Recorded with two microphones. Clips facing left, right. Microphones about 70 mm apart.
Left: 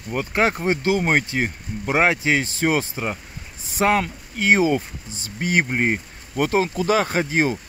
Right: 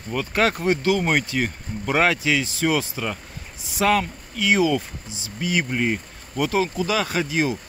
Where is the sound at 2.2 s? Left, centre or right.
Left.